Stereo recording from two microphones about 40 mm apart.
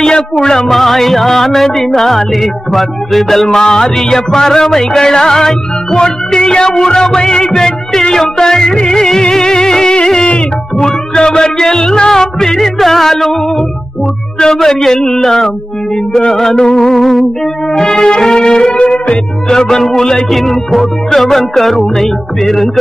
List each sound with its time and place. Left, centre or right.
0.0 s music: centre
3.4 s music: centre
14.4 s music: centre
16.9 s music: centre; by 19.1 s left
19.5 s music: centre